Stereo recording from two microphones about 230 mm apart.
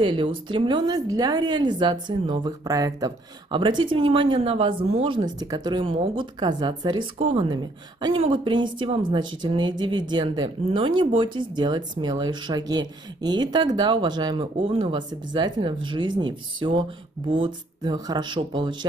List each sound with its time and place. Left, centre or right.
0.0 s a woman's voice: right